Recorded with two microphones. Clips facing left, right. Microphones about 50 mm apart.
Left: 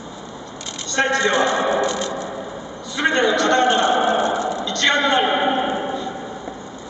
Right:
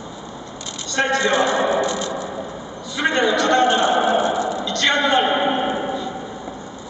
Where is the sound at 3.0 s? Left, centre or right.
Centre.